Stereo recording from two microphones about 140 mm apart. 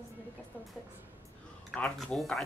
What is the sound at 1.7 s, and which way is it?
Speech, 10° left (ahead or behind).